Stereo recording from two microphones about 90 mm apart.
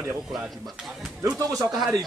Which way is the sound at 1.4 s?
40° right (ahead or behind).